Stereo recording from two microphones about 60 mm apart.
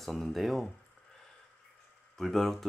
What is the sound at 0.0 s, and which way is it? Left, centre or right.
Speech, centre.